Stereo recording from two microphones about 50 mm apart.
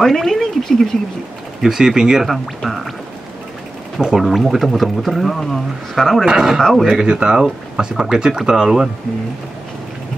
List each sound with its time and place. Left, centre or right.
0.0 s speech: centre
1.6 s speech: centre
2.2 s speech: centre
4.0 s speech: centre
6.2 s speech: centre
6.7 s speech: centre
7.0 s speech: centre